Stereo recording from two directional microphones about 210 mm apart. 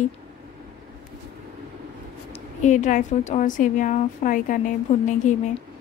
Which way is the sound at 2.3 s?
30° left (ahead or behind).